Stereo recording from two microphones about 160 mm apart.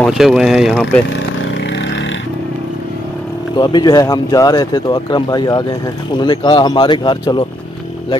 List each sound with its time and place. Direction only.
0.0 s speech: 5° right (ahead or behind)
3.5 s speech: 25° left (ahead or behind)